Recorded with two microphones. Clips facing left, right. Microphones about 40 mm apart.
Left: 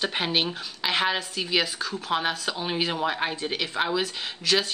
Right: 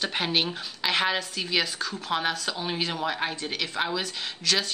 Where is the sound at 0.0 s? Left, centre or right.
Centre.